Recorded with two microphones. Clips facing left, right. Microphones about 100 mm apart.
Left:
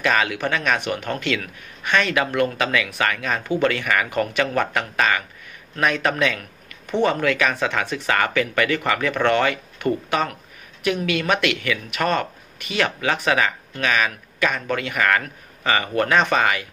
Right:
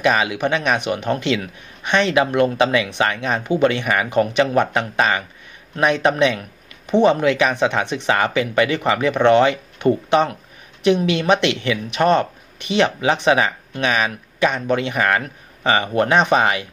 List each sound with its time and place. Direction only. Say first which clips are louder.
0.0 s speech: right 3 dB; 20° right (ahead or behind)